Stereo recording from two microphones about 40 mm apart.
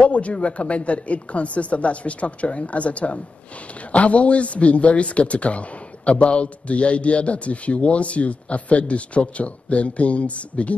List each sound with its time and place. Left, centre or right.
0.0 s a man's voice: left